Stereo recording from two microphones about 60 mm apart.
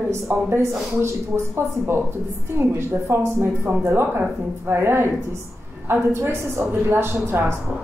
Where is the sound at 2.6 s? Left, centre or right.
Right.